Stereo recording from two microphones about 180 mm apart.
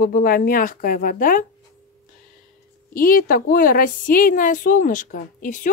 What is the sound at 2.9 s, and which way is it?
Speech, 50° left (ahead or behind).